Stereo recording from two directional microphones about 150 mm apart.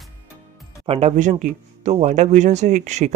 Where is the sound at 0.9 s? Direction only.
45° right (ahead or behind).